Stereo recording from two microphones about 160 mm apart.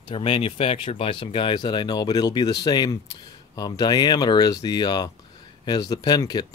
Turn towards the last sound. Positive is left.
turn(degrees=25)  # may be behind; listen again after turning